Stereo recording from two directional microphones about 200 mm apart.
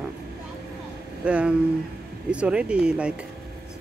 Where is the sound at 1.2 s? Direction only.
5° right (ahead or behind).